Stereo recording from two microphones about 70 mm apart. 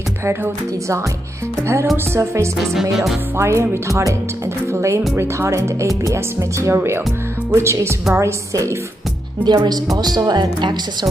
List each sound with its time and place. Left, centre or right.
1.6 s speech: right
2.7 s music: centre
3.3 s speech: right
5.1 s speech: right
9.4 s speech: right
9.9 s speech: right